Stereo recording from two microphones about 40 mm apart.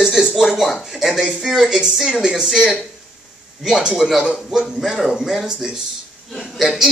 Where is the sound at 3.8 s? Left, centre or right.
Centre.